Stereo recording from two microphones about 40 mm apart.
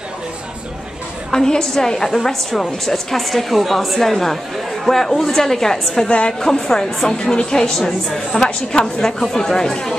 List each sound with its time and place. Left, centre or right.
1.3 s a woman's voice: centre
2.1 s a woman's voice: centre
6.0 s a woman's voice: left
6.4 s a woman's voice: centre